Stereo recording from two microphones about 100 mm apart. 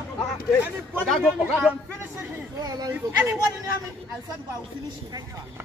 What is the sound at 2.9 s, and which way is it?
Speech, 25° right (ahead or behind).